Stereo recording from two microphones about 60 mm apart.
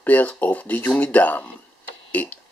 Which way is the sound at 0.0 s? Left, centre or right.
Left.